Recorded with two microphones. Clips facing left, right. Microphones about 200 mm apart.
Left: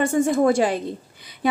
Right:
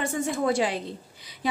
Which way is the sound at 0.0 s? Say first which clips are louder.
Left 8 dB; 50° left (ahead or behind).